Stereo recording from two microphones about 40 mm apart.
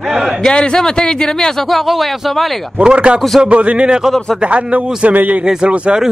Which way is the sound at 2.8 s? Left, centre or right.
Right.